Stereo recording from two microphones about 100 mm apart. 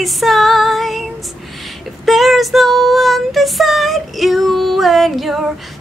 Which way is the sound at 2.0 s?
Centre (ahead or behind).